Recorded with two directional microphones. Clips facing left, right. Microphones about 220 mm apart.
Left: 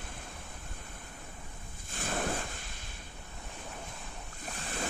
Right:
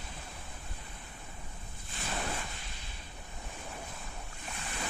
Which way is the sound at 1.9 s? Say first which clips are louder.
Left 4 dB; 50° left (ahead or behind).